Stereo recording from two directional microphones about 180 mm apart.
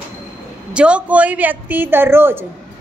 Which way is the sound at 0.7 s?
5° right (ahead or behind).